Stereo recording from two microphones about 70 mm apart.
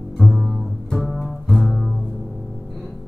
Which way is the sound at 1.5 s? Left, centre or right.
Centre.